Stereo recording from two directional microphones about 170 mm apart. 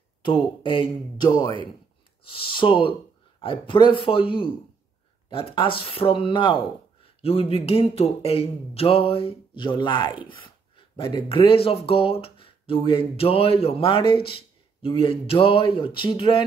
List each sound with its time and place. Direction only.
0.2 s speech: 30° left (ahead or behind)